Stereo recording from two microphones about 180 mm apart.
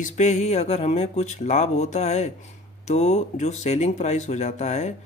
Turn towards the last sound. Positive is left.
turn(degrees=40)  # may be behind; listen again after turning